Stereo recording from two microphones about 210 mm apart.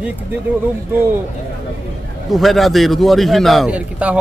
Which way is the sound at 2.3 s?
Centre (ahead or behind).